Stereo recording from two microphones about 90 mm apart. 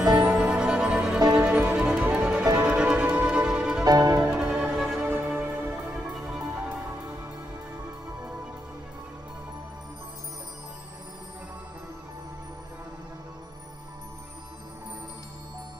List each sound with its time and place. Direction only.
0.4 s music: 10° right (ahead or behind)
3.8 s music: 45° right (ahead or behind)
4.3 s music: 15° right (ahead or behind)
4.7 s music: centre (ahead or behind)
5.0 s music: 25° right (ahead or behind)